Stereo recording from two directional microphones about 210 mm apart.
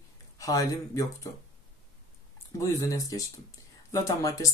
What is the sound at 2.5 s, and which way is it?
Speech, 15° left (ahead or behind).